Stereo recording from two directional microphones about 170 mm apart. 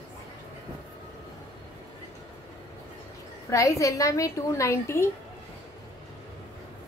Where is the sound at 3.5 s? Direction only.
20° left (ahead or behind).